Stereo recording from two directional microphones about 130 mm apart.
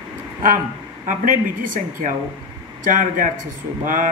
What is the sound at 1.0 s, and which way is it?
A man's voice, 90° right.